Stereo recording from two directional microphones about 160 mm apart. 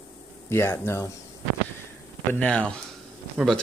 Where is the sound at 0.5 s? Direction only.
15° left (ahead or behind).